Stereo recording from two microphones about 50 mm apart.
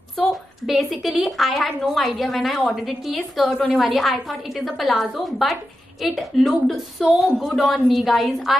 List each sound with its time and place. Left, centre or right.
0.3 s a woman's voice: centre